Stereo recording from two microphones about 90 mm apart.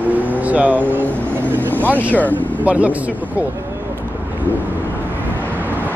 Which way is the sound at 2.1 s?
20° left (ahead or behind).